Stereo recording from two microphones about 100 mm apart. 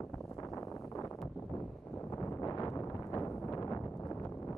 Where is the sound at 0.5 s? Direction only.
35° left (ahead or behind).